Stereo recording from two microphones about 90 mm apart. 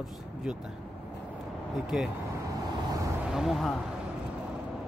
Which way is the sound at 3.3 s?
5° right (ahead or behind).